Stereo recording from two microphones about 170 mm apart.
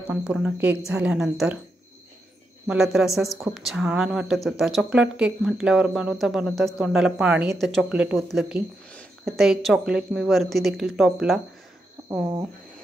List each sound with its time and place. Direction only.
0.1 s a woman's voice: 10° right (ahead or behind)
2.6 s speech: 5° right (ahead or behind)